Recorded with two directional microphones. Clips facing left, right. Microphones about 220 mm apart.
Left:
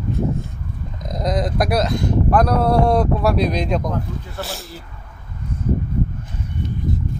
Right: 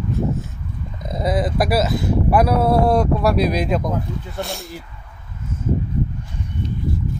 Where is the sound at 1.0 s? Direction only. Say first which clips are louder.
Right 1 dB; 5° right (ahead or behind).